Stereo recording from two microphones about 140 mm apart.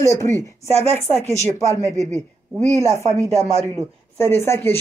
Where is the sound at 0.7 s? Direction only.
50° right (ahead or behind).